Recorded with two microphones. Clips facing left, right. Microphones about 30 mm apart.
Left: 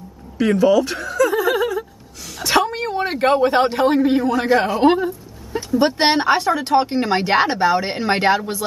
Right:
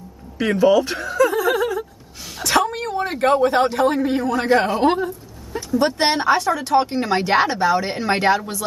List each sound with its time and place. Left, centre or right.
0.4 s speech: centre
1.3 s a sound: centre
2.7 s speech: left; by 5.1 s centre
5.7 s speech: centre